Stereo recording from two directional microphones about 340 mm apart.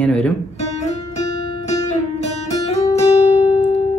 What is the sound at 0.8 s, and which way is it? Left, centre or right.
Music, centre.